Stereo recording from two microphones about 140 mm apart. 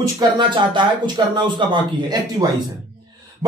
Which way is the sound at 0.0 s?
35° right (ahead or behind).